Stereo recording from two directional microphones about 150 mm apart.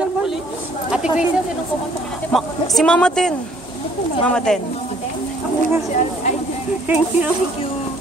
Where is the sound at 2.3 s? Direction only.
Centre (ahead or behind).